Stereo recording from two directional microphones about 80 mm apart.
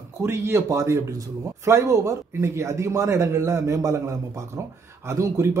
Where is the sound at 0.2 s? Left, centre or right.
Right.